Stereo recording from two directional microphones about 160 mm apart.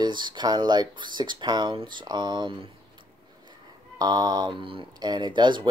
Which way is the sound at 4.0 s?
25° right (ahead or behind).